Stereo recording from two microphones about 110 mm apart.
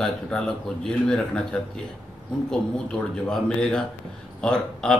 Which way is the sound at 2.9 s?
5° left (ahead or behind).